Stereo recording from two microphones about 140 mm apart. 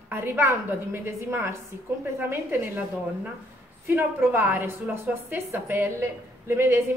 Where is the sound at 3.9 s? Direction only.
15° right (ahead or behind).